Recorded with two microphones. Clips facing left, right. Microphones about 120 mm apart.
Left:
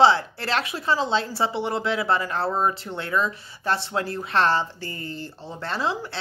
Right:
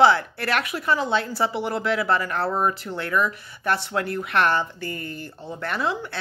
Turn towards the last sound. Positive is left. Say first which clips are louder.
# right 1 dB
turn(degrees=25)  # may be behind; listen again after turning